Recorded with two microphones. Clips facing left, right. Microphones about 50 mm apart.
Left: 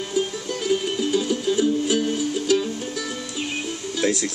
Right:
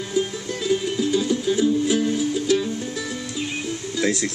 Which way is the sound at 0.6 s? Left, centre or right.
Left.